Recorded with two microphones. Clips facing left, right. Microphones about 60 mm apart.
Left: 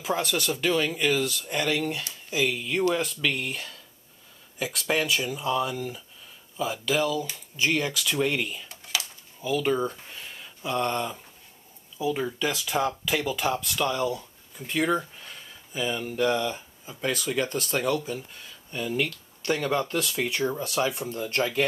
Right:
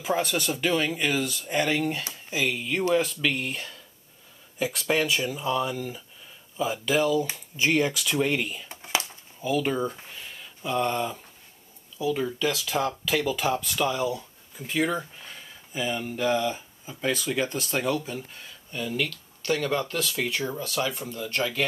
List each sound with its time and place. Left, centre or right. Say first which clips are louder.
0.0 s speech: right 1 dB; centre
1.6 s speech: right 2 dB; right
2.5 s speech: right 1 dB; centre
7.2 s speech: right 2 dB; right; by 8.6 s centre
8.6 s a sound: right 4 dB; right
9.4 s speech: even; centre
12.0 s speech: right 1 dB; centre
18.7 s speech: left 1 dB; centre
18.9 s speech: left 1 dB; left
19.6 s speech: left 1 dB; centre
20.4 s speech: left 2 dB; centre